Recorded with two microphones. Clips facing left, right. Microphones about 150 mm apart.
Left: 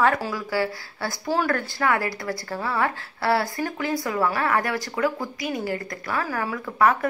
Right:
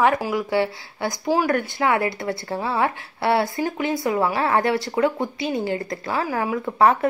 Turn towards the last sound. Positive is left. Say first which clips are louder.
# right 3 dB
turn(degrees=-25)  # may be behind; listen again after turning